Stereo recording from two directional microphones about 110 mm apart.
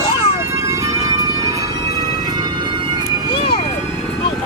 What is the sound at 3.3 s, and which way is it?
Vehicle, 55° left (ahead or behind).